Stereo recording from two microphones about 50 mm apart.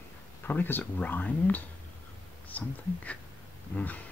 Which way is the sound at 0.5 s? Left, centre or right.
Left.